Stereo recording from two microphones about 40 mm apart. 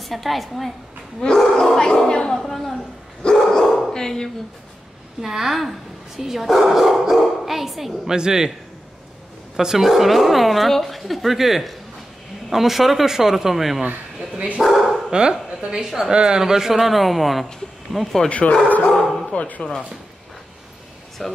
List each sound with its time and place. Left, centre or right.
0.0 s a woman's voice: centre
2.3 s speech: centre
3.4 s dog: centre
3.9 s speech: centre
5.2 s speech: centre
8.1 s speech: centre
9.6 s a woman's voice: centre
14.6 s dog: centre
15.0 s a woman's voice: centre
18.3 s speech: left
18.9 s bow-wow: centre
19.3 s speech: left
21.2 s speech: centre